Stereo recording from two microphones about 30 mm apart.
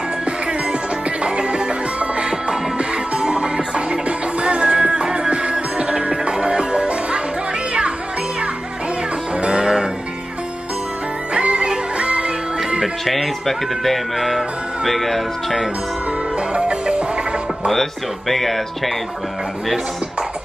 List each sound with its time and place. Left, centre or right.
0.2 s music: right
9.4 s music: right
11.3 s music: right
13.0 s speech: centre
16.3 s music: right
18.3 s speech: centre